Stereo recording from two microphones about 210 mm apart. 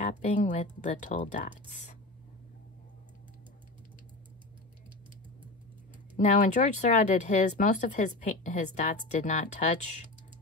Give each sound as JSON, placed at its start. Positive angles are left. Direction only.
{"t": 0.3, "sound": "speech", "side_deg": 35}
{"t": 6.1, "sound": "speech", "side_deg": 35}